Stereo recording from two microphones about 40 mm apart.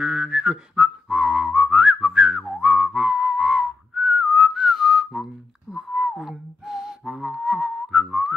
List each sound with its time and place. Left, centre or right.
0.0 s whistling: centre
5.2 s telephone dialing: centre
5.9 s whistling: centre
7.3 s whistling: right